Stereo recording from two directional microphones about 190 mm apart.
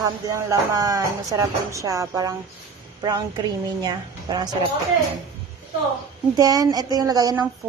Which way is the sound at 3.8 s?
20° right (ahead or behind).